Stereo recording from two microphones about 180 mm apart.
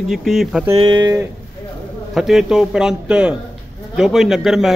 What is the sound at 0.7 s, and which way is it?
Speech, 25° right (ahead or behind).